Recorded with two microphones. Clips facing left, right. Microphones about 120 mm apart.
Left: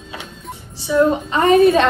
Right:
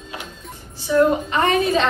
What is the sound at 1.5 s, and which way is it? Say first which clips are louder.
Speech: left 11 dB; 55° left (ahead or behind).